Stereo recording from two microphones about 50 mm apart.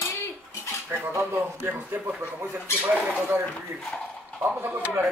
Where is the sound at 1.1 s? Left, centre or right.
Right.